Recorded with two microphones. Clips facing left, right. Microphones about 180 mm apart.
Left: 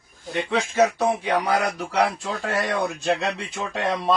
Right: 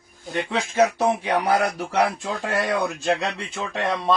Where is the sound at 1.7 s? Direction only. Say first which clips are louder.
Right 1 dB; 10° right (ahead or behind).